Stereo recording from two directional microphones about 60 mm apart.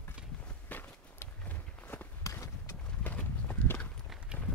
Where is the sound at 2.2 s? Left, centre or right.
Left.